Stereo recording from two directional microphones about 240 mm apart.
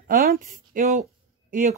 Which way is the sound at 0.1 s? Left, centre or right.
Right.